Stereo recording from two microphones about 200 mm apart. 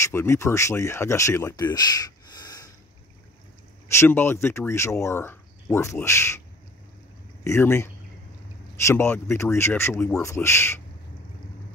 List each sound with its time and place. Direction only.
0.0 s speech: 15° left (ahead or behind)
3.9 s speech: 10° left (ahead or behind)
7.4 s speech: 15° left (ahead or behind)